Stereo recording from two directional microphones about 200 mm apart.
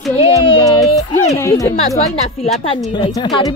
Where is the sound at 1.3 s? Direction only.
15° left (ahead or behind).